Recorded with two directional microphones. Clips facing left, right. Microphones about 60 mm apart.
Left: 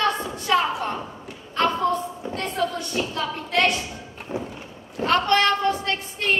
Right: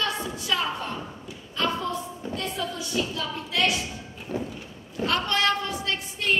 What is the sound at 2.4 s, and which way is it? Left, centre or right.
A woman's voice, left.